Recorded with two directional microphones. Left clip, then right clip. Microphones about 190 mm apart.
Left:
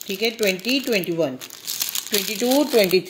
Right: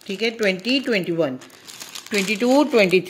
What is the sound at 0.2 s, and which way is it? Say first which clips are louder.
Speech: right 1 dB; 5° right (ahead or behind).